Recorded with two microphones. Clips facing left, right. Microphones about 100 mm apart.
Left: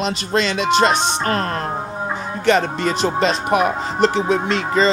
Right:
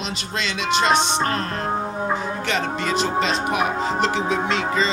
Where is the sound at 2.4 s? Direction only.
45° left (ahead or behind).